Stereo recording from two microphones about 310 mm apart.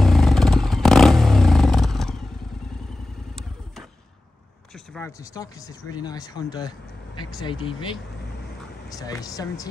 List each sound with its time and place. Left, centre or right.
0.0 s vehicle: centre
4.9 s speech: centre